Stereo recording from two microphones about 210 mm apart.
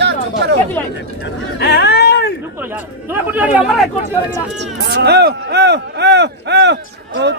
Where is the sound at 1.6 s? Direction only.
50° left (ahead or behind).